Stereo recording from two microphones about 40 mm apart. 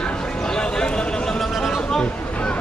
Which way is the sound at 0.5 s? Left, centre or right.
Centre.